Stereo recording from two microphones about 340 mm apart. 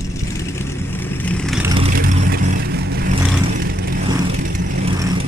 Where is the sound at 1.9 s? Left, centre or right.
Right.